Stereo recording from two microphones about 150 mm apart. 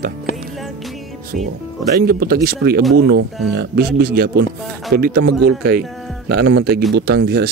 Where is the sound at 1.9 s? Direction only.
90° right.